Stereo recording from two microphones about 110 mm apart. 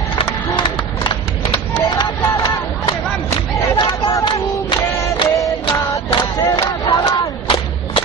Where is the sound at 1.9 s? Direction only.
40° left (ahead or behind).